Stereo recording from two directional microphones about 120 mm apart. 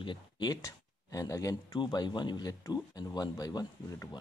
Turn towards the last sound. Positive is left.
turn(degrees=30)  # may be behind; listen again after turning